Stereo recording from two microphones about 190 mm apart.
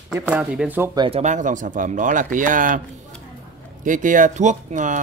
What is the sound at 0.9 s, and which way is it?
Speech, 25° right (ahead or behind).